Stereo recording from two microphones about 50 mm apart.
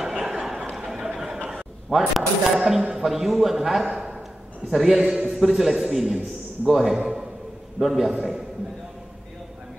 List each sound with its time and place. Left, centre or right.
0.0 s a sound: centre
1.5 s a man's voice: centre
8.1 s a man's voice: centre